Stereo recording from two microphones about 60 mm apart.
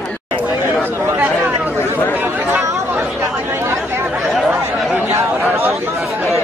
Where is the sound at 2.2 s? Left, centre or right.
Right.